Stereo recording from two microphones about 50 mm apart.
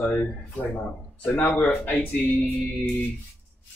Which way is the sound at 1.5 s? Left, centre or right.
Left.